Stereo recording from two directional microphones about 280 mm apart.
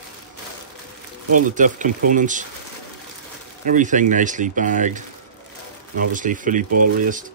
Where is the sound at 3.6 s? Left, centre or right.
Right.